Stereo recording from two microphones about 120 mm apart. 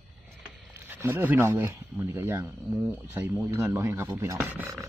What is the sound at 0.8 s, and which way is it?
Speech, 15° right (ahead or behind).